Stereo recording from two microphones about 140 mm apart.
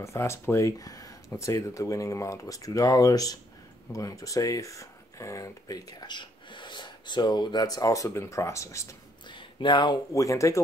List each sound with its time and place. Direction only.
0.0 s speech: 20° left (ahead or behind)
9.3 s speech: 35° left (ahead or behind)